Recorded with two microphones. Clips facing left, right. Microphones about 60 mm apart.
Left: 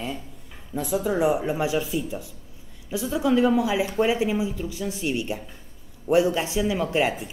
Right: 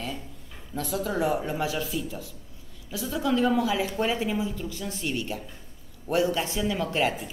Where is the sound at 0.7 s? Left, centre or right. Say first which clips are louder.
Left 4 dB; centre.